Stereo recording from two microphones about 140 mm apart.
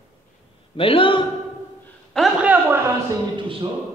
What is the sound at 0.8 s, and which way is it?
Speech, 40° left (ahead or behind).